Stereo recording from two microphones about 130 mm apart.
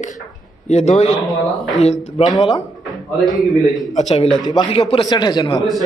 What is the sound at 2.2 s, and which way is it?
Speech, centre (ahead or behind).